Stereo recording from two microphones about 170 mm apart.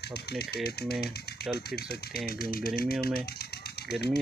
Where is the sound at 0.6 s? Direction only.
70° left (ahead or behind).